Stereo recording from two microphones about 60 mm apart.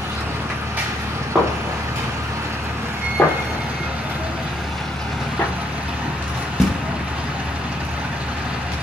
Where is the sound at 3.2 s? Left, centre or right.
Left.